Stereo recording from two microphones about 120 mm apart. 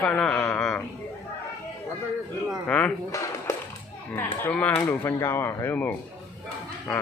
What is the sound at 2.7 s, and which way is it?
Speech, 10° left (ahead or behind).